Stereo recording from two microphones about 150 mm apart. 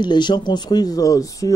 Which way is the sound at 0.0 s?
30° left (ahead or behind).